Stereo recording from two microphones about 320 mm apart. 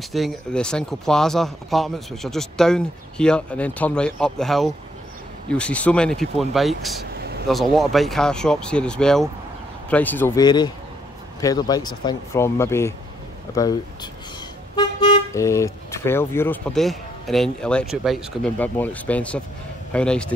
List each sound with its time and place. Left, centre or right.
0.1 s speech: centre
7.2 s a sound: right
7.4 s speech: centre
14.8 s speech: centre